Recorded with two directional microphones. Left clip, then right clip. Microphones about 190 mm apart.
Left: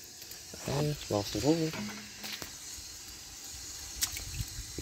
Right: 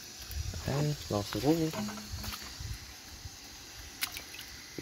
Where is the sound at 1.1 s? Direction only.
20° right (ahead or behind).